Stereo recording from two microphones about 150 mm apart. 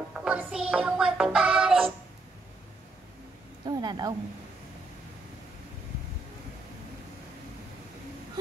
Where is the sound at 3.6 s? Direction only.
30° right (ahead or behind).